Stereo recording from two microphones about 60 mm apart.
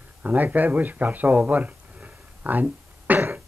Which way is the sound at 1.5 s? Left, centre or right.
Right.